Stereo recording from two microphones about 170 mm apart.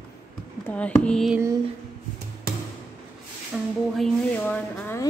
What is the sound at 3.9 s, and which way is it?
Speech, 5° left (ahead or behind).